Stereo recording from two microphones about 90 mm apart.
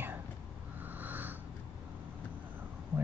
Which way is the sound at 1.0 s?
20° right (ahead or behind).